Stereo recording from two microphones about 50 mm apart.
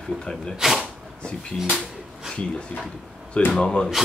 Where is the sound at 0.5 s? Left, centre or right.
Centre.